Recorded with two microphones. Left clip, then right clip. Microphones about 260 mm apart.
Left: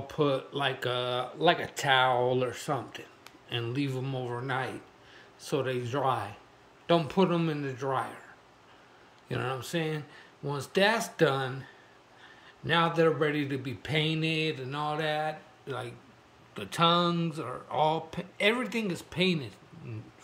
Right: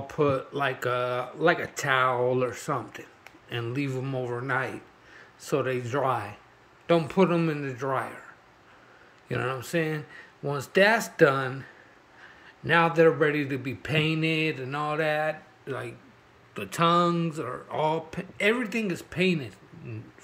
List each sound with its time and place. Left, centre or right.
0.0 s speech: centre
9.3 s speech: centre
12.6 s speech: centre